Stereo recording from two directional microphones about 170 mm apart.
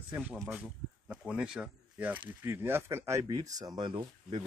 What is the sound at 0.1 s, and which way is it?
Speech, 10° right (ahead or behind).